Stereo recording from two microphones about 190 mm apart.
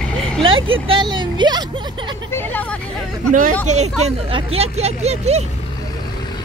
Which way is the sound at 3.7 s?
35° right (ahead or behind).